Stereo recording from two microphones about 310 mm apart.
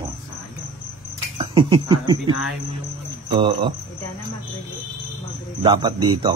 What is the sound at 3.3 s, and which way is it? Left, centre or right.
Speech, centre.